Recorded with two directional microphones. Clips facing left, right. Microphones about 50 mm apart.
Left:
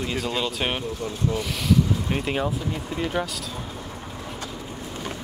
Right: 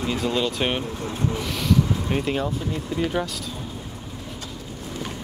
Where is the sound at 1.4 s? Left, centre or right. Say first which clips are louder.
Even; centre.